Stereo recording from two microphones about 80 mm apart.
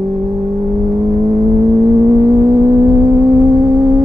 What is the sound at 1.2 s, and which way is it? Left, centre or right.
Vehicle, right.